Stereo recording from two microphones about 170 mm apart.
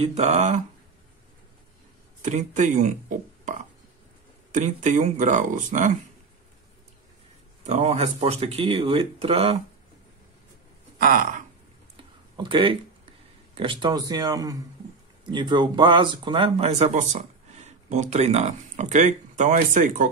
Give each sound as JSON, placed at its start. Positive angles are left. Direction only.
{"t": 0.0, "sound": "speech", "side_deg": -40}
{"t": 2.2, "sound": "speech", "side_deg": -45}
{"t": 7.6, "sound": "speech", "side_deg": -40}
{"t": 11.0, "sound": "speech", "side_deg": -55}
{"t": 12.0, "sound": "a sound", "side_deg": -30}
{"t": 13.6, "sound": "speech", "side_deg": -30}